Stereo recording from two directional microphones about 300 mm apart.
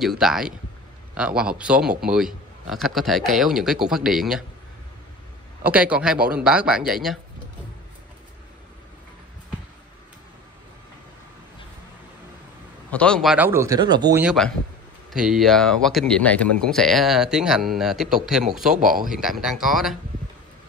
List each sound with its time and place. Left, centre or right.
0.2 s speech: centre
5.7 s speech: centre
12.9 s speech: centre
18.8 s speech: right
19.0 s speech: centre